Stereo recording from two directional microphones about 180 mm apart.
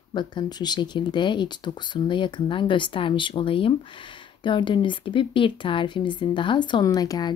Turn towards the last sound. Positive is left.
turn(degrees=20)  # may be behind; listen again after turning